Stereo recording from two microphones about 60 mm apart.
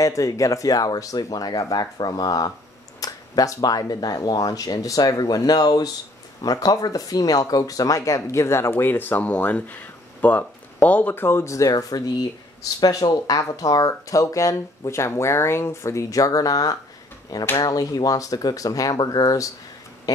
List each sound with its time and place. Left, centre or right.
0.0 s speech: left
3.0 s speech: left
8.9 s speech: left
11.4 s speech: left
12.6 s speech: left
17.3 s speech: left
17.6 s speech: left